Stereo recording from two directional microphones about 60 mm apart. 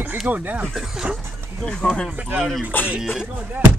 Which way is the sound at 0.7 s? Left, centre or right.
Centre.